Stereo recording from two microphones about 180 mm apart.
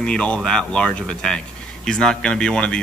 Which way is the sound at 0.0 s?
5° left (ahead or behind).